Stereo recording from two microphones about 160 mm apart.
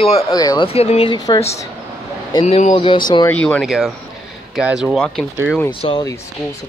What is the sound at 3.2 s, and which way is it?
Speech, 10° left (ahead or behind).